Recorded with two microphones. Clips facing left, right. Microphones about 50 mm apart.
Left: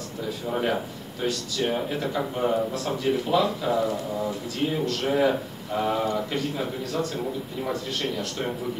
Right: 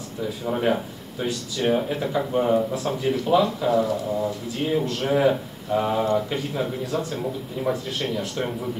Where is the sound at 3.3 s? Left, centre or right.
Centre.